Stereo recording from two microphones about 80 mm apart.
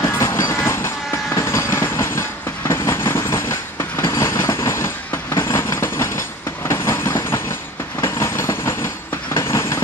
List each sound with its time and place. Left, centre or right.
0.0 s train: left